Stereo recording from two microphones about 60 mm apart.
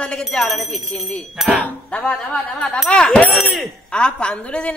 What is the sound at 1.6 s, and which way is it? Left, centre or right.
Speech, centre.